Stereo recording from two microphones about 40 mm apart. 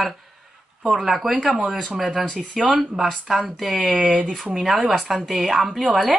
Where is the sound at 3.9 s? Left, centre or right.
Right.